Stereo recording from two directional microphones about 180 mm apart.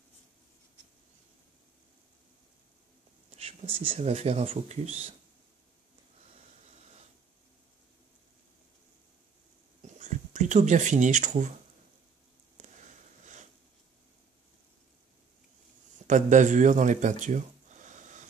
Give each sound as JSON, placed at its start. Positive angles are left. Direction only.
{"t": 3.3, "sound": "speech", "side_deg": -30}
{"t": 9.9, "sound": "speech", "side_deg": -40}
{"t": 12.5, "sound": "a sound", "side_deg": -40}
{"t": 16.1, "sound": "speech", "side_deg": -45}